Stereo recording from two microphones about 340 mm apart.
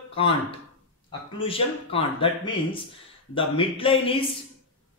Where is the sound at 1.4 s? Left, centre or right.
Centre.